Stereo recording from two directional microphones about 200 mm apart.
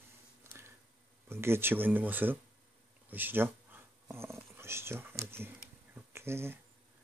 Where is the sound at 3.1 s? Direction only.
10° right (ahead or behind).